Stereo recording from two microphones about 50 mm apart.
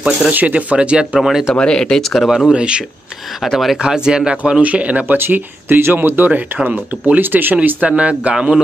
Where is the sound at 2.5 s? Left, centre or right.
Centre.